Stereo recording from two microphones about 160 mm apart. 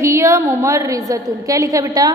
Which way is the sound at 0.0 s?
20° right (ahead or behind).